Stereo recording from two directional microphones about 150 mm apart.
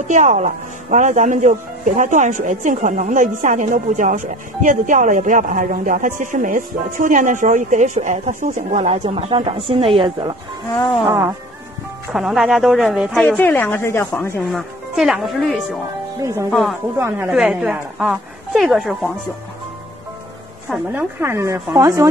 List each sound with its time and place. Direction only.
0.1 s speech: 55° right (ahead or behind); by 10.3 s 35° right (ahead or behind)
11.1 s a woman's voice: 20° right (ahead or behind)
12.1 s a woman's voice: 5° right (ahead or behind)
13.2 s a woman's voice: 10° left (ahead or behind)
14.5 s a woman's voice: centre (ahead or behind)
16.2 s a woman's voice: 20° right (ahead or behind)
16.4 s a woman's voice: centre (ahead or behind)
20.9 s a woman's voice: 15° right (ahead or behind)